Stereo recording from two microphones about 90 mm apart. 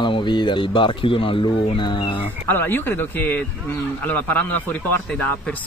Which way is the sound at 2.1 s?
20° left (ahead or behind).